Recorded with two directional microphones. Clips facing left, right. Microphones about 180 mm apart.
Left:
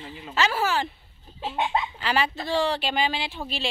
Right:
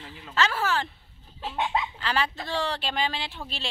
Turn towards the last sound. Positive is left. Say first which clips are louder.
# left 3 dB
turn(degrees=5)  # may be behind; listen again after turning